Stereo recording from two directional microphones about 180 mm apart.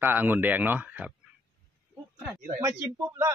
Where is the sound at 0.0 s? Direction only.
10° right (ahead or behind).